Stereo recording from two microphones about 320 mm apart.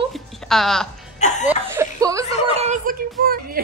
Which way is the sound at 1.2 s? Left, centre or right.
Left.